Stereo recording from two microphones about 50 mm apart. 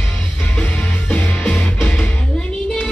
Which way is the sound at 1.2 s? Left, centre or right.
Left.